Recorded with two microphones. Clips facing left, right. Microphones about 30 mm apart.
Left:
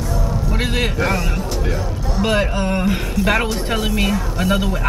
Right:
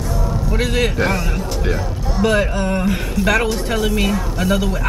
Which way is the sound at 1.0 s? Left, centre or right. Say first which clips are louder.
Right 1 dB; centre.